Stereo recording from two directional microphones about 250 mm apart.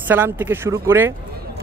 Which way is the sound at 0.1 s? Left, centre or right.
Centre.